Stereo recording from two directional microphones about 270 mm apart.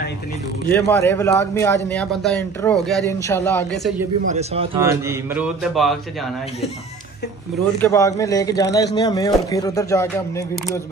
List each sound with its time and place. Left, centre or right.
0.7 s a man's voice: centre
4.3 s speech: right
4.7 s speech: centre
7.8 s speech: centre